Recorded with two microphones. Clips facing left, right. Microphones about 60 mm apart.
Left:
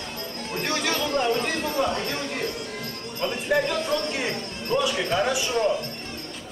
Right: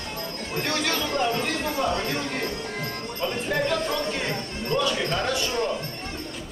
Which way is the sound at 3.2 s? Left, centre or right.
Centre.